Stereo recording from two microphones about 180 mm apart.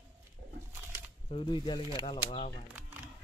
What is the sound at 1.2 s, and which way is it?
Speech, 30° left (ahead or behind).